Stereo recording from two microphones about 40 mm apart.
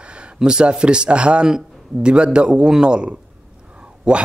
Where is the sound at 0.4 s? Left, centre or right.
Right.